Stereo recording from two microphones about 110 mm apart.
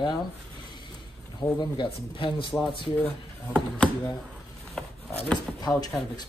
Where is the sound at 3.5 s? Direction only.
10° left (ahead or behind).